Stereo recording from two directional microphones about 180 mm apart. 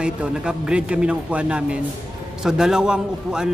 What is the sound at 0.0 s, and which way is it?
A man's voice, 5° right (ahead or behind).